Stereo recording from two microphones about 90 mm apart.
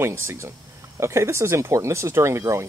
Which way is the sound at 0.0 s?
30° right (ahead or behind).